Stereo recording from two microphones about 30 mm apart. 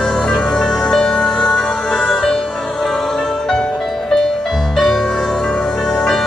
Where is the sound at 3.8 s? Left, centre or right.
Centre.